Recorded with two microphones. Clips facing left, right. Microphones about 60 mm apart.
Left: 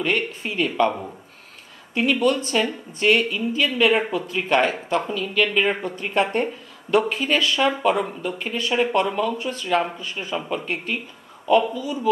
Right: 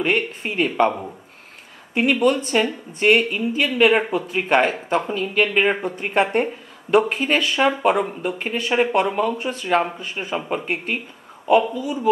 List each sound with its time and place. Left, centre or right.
0.0 s a woman's voice: right
2.0 s a woman's voice: right